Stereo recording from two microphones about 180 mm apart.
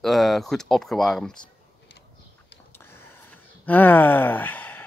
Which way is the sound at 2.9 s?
10° left (ahead or behind).